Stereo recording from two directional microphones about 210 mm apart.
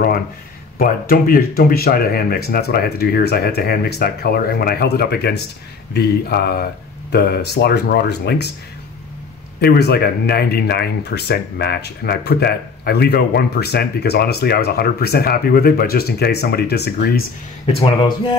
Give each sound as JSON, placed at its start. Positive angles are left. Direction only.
{"t": 0.7, "sound": "speech", "side_deg": 45}
{"t": 9.6, "sound": "speech", "side_deg": 50}
{"t": 17.7, "sound": "speech", "side_deg": 25}